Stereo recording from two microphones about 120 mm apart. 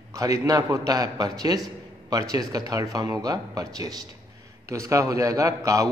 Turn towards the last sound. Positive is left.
turn(degrees=-30)  # may be behind; listen again after turning